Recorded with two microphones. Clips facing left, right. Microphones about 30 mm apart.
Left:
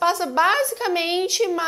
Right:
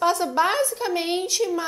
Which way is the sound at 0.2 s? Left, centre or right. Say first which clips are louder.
Left 2 dB; centre.